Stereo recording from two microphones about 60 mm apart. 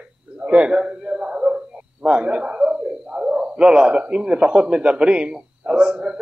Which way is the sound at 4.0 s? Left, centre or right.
Centre.